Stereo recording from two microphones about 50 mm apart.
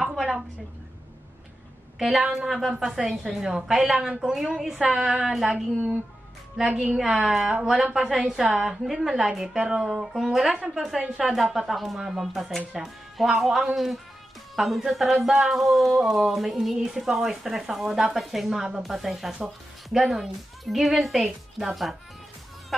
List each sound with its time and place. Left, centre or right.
0.0 s a sound: centre
2.0 s a woman's voice: centre; by 5.9 s right
7.0 s a woman's voice: centre
9.6 s a woman's voice: centre
11.0 s a woman's voice: centre
11.3 s a woman's voice: centre
14.5 s music: centre
14.8 s a woman's voice: centre